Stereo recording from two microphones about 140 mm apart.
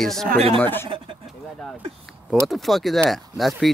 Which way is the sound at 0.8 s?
40° right (ahead or behind).